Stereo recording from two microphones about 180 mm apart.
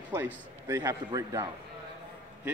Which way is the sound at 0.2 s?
15° right (ahead or behind).